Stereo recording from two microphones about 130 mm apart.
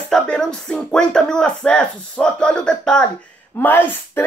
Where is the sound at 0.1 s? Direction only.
5° left (ahead or behind).